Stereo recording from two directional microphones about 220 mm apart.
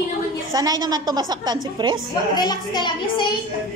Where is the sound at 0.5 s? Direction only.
15° right (ahead or behind).